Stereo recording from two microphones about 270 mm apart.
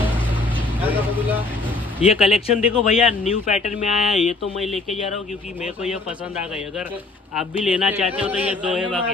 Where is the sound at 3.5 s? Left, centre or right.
Left.